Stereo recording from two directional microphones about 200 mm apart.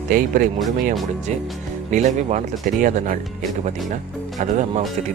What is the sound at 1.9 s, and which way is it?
Speech, 40° right (ahead or behind).